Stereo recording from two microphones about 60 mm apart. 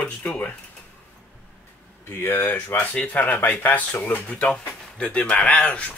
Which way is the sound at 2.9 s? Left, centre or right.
Left.